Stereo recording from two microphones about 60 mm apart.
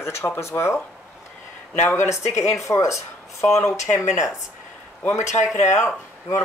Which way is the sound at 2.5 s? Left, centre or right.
Left.